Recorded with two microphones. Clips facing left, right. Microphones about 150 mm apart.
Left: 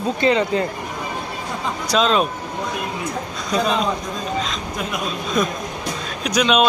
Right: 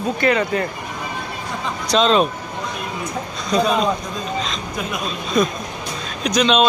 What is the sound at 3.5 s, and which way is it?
Speech, 5° left (ahead or behind).